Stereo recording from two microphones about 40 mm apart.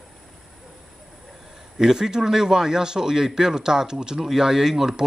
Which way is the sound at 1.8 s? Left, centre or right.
Centre.